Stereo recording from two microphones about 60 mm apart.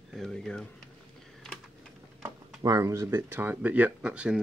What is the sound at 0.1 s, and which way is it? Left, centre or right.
Speech, centre.